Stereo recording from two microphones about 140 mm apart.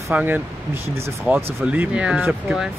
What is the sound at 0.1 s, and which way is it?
Speech, 15° right (ahead or behind).